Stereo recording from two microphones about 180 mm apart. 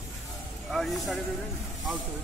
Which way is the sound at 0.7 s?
Centre (ahead or behind).